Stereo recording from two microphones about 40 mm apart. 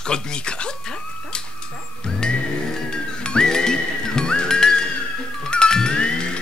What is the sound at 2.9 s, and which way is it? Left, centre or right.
Music, left.